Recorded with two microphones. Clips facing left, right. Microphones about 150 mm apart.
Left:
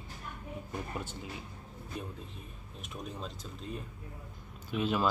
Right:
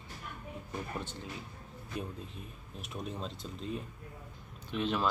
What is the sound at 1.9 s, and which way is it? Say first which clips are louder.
Speech: right 2 dB; centre (ahead or behind).